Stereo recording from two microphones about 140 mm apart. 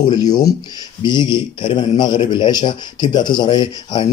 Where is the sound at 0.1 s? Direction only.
25° left (ahead or behind).